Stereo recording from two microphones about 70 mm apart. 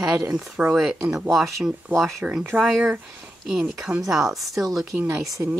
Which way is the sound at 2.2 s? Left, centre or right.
Centre.